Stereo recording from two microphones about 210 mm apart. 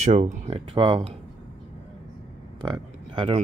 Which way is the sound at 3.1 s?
25° right (ahead or behind).